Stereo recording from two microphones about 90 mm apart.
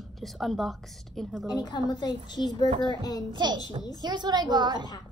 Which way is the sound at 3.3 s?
55° right (ahead or behind).